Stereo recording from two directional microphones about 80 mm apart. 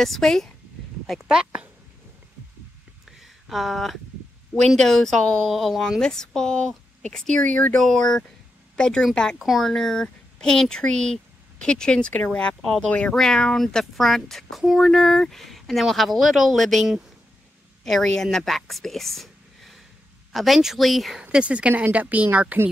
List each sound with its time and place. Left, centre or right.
0.0 s speech: centre
1.2 s speech: centre
3.1 s a sound: centre
4.6 s speech: centre
21.2 s speech: centre